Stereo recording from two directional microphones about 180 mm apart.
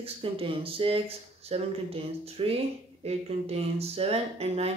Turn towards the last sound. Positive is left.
turn(degrees=-35)  # may be behind; listen again after turning